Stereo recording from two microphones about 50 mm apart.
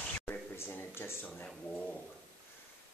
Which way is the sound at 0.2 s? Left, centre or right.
Left.